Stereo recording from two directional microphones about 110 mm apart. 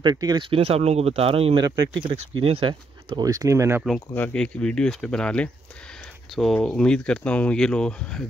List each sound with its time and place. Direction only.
0.0 s speech: 40° right (ahead or behind)
0.4 s speech: 60° right (ahead or behind)
3.2 s speech: 35° right (ahead or behind)
4.1 s speech: 15° left (ahead or behind)
6.5 s speech: 5° left (ahead or behind)